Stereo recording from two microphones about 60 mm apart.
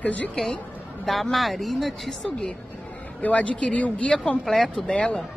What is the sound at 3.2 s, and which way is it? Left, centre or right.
A woman's voice, left.